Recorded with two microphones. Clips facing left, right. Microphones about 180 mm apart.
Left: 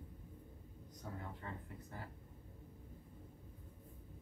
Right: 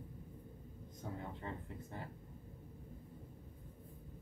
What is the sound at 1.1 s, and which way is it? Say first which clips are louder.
Speech: right 3 dB; 20° right (ahead or behind).